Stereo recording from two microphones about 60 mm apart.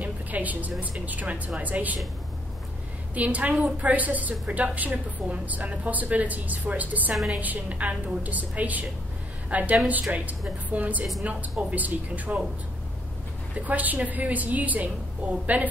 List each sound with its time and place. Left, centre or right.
0.0 s a woman's voice: right
3.2 s a woman's voice: right
13.6 s a woman's voice: right